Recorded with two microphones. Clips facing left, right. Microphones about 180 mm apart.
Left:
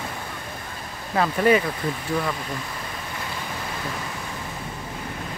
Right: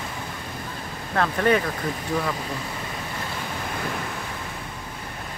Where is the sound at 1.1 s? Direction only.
5° left (ahead or behind).